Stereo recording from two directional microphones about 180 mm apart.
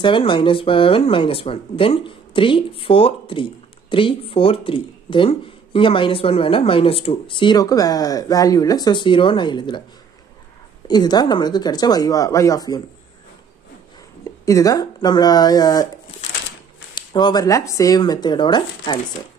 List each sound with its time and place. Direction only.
0.0 s speech: 25° left (ahead or behind)
10.9 s speech: 25° left (ahead or behind)
14.2 s speech: 15° left (ahead or behind)
16.9 s speech: 25° left (ahead or behind)